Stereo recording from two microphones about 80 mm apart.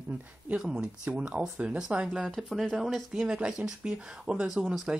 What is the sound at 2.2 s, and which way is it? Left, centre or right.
Speech, centre.